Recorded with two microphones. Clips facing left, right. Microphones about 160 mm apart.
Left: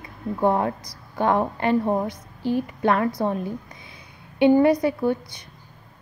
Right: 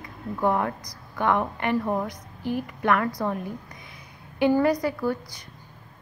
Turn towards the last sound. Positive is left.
turn(degrees=25)  # may be behind; listen again after turning